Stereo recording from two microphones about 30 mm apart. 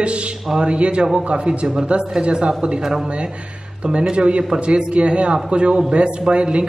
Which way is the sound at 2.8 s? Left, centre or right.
Centre.